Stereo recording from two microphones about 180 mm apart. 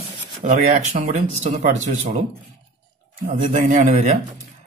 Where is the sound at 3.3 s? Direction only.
45° right (ahead or behind).